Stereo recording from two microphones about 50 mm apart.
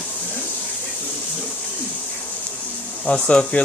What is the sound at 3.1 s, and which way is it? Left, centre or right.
Speech, centre.